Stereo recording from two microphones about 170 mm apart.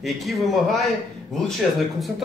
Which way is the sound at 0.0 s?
Centre (ahead or behind).